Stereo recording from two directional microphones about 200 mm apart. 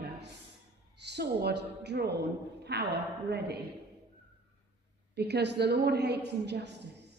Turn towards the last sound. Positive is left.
turn(degrees=-55)  # may be behind; listen again after turning